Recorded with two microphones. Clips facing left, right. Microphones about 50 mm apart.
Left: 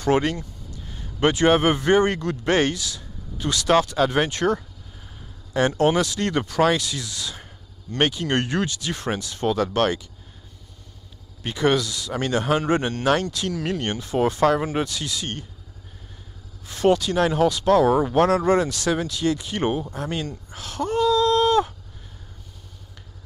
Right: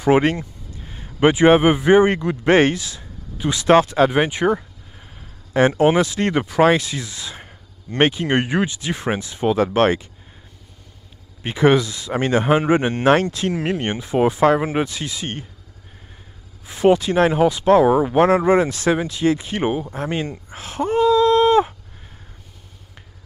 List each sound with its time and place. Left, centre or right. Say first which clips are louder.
0.2 s a man's voice: right 6 dB; right
2.4 s speech: right 6 dB; right
4.1 s speech: right 3 dB; centre
11.4 s speech: right 5 dB; right
12.9 s speech: right 5 dB; right
16.6 s speech: right 4 dB; centre
19.9 s speech: right 4 dB; right